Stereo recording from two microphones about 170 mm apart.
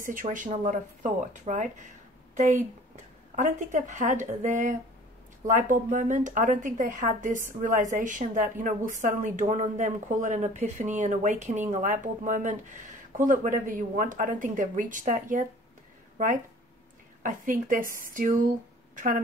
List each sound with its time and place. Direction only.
0.0 s a woman's voice: 50° right (ahead or behind)
17.2 s a woman's voice: 50° right (ahead or behind)